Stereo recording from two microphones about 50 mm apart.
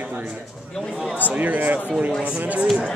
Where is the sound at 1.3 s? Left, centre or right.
Right.